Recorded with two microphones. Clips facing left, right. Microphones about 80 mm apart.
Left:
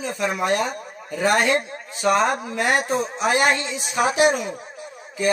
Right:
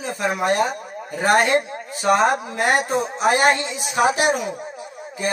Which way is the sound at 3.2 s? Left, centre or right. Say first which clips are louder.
Right 3 dB; right.